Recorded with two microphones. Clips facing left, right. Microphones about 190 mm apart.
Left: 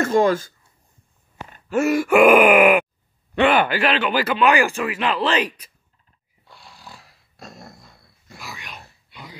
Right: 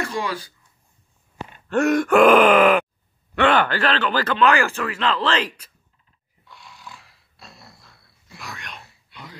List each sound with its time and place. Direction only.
0.0 s speech: 45° left (ahead or behind)
1.7 s speech: 5° left (ahead or behind)
6.5 s dog: 35° left (ahead or behind)
8.4 s a sound: centre (ahead or behind)